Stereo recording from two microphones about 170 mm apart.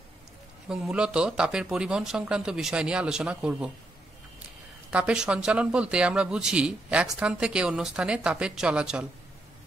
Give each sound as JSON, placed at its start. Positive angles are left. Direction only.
{"t": 0.7, "sound": "speech", "side_deg": -5}
{"t": 4.9, "sound": "speech", "side_deg": -5}